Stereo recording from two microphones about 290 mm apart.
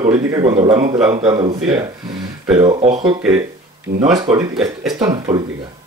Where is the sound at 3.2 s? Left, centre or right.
Centre.